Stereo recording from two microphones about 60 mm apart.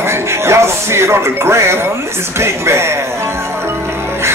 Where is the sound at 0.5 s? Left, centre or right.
Right.